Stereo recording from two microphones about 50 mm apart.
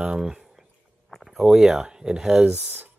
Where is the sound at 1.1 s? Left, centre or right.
Centre.